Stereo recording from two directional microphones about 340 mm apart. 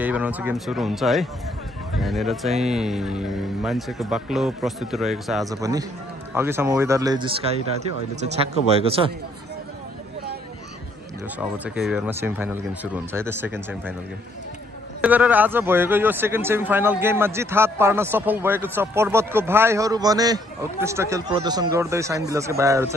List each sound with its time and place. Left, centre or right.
0.0 s speech: centre
11.3 s speech: centre
15.0 s speech: centre